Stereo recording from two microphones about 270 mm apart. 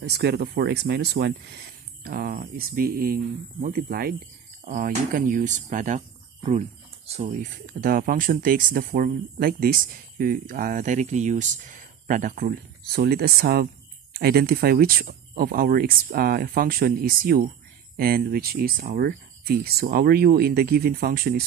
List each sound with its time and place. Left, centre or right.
0.0 s speech: right